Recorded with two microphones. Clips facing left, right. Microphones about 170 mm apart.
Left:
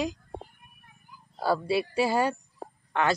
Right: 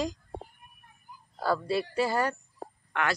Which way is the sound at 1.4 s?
10° left (ahead or behind).